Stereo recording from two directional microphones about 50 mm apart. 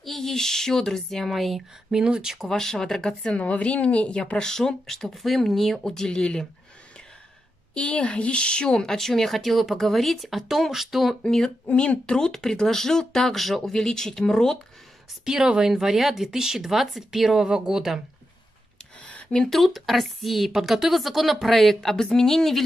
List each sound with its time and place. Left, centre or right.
0.0 s speech: centre
1.9 s speech: centre
2.3 s speech: centre
7.7 s speech: centre
11.2 s speech: centre
11.7 s speech: centre
15.2 s speech: centre
19.0 s a sound: centre
19.5 s a woman's voice: centre